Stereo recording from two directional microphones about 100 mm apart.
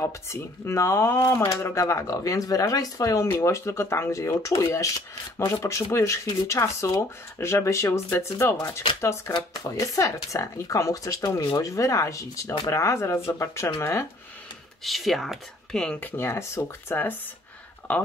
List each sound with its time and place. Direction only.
0.0 s speech: 30° left (ahead or behind)
14.8 s speech: centre (ahead or behind)
16.0 s speech: 20° left (ahead or behind)